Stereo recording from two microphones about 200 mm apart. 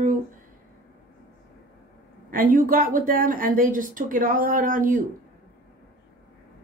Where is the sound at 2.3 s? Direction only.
45° right (ahead or behind).